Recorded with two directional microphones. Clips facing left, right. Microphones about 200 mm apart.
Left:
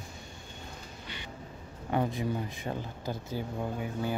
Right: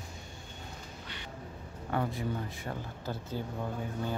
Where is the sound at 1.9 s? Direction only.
20° left (ahead or behind).